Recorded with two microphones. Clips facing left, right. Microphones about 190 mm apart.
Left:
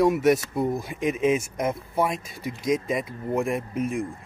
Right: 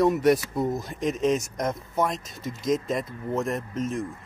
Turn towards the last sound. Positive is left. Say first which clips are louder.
# left 2 dB
turn(degrees=10)  # may be behind; listen again after turning